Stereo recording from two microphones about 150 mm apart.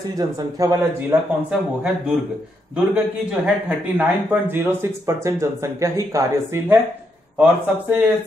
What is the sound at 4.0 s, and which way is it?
Speech, 10° right (ahead or behind).